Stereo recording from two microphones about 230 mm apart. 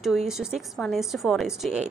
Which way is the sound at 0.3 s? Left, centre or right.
Centre.